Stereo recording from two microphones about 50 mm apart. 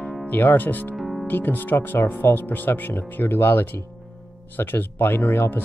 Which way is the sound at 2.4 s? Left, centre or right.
Left.